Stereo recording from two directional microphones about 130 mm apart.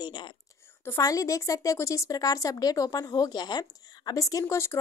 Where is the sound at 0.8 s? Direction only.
25° left (ahead or behind).